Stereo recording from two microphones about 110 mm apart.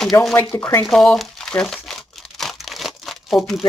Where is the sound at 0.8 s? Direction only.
Centre (ahead or behind).